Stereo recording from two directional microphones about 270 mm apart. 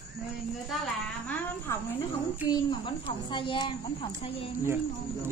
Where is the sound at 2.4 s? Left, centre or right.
Centre.